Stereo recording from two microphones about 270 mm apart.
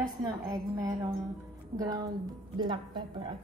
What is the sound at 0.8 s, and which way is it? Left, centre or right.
A woman's voice, centre.